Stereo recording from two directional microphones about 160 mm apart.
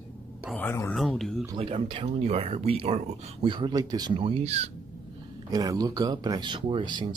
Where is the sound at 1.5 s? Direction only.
35° right (ahead or behind).